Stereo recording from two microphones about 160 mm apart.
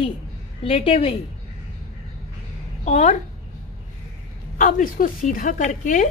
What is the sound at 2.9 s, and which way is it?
Speech, 50° left (ahead or behind).